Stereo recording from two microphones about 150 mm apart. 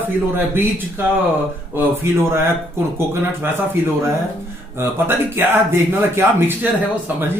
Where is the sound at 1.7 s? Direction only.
15° right (ahead or behind).